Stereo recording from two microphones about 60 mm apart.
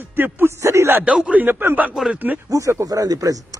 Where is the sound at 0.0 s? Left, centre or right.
Right.